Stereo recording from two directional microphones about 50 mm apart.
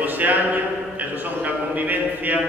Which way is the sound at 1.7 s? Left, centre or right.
Right.